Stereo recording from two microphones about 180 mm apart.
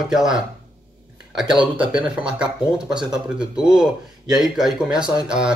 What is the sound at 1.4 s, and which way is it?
Speech, 5° right (ahead or behind).